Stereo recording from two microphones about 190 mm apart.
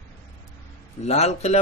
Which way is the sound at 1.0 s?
35° left (ahead or behind).